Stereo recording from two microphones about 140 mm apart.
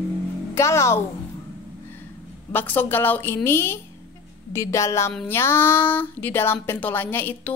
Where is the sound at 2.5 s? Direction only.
15° left (ahead or behind).